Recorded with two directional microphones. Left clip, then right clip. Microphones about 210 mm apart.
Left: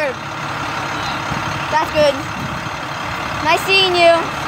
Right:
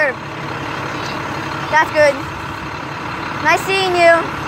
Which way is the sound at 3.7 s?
20° right (ahead or behind).